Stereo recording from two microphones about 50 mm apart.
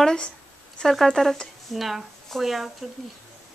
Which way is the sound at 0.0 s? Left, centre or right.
Centre.